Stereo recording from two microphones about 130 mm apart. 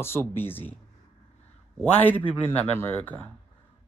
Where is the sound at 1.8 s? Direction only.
15° left (ahead or behind).